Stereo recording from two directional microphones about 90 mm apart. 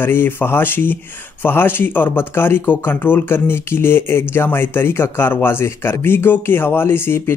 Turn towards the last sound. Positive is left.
turn(degrees=25)  # may be behind; listen again after turning